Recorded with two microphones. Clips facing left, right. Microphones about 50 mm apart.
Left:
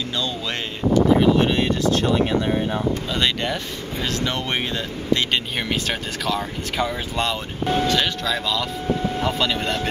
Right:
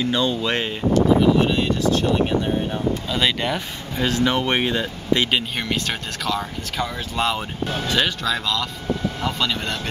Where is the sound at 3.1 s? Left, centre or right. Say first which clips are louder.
Right 3 dB; centre.